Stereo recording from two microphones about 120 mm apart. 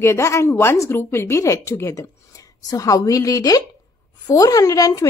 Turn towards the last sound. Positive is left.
turn(degrees=30)  # may be behind; listen again after turning